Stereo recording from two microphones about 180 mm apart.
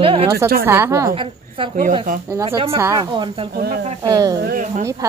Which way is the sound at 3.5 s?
60° right (ahead or behind).